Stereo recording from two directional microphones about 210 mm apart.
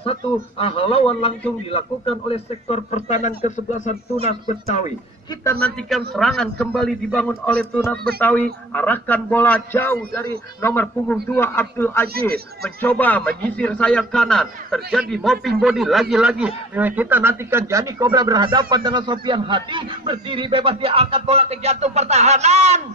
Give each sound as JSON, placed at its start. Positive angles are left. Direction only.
{"t": 0.0, "sound": "a man's voice", "side_deg": 25}
{"t": 5.4, "sound": "a man's voice", "side_deg": 15}
{"t": 5.8, "sound": "a man's voice", "side_deg": 0}
{"t": 12.1, "sound": "speech", "side_deg": -45}
{"t": 12.6, "sound": "a man's voice", "side_deg": 5}